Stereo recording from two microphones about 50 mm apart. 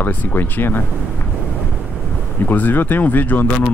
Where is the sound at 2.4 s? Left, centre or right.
Left.